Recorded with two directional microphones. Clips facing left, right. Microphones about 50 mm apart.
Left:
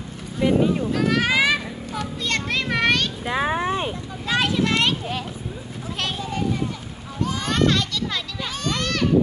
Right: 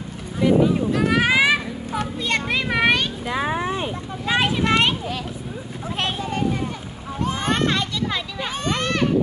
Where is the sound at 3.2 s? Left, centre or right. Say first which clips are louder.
Left 3 dB; left.